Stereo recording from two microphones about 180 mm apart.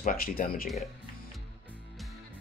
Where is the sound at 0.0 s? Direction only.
55° left (ahead or behind).